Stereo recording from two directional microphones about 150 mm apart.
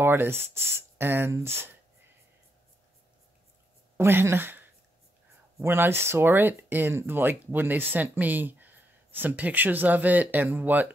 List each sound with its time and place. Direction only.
0.0 s speech: 15° right (ahead or behind)
3.9 s a woman's voice: 15° right (ahead or behind)